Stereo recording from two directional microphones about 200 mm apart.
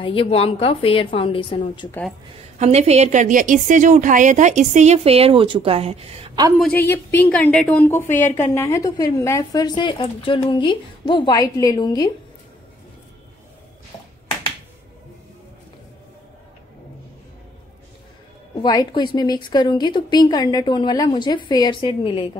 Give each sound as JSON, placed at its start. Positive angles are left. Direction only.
{"t": 0.0, "sound": "a woman's voice", "side_deg": 25}
{"t": 2.6, "sound": "a woman's voice", "side_deg": -30}
{"t": 6.9, "sound": "a woman's voice", "side_deg": 10}
{"t": 18.6, "sound": "a woman's voice", "side_deg": 20}